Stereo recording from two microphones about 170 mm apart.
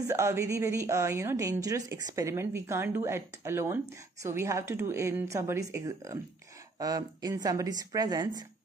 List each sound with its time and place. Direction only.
0.1 s speech: 15° right (ahead or behind)